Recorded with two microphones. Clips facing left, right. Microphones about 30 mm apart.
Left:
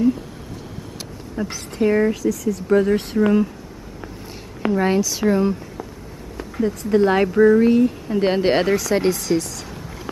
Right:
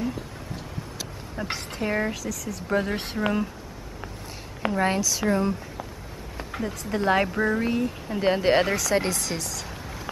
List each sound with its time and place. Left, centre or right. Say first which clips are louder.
1.4 s speech: left 8 dB; centre
4.6 s speech: left 5 dB; centre
6.9 s speech: left 6 dB; centre
8.2 s speech: left 3 dB; centre
8.6 s speech: left 6 dB; centre